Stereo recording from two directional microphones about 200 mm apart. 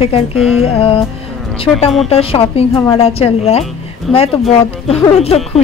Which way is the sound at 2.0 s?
30° left (ahead or behind).